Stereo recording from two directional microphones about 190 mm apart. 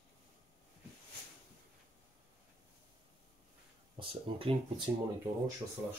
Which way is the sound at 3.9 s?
30° right (ahead or behind).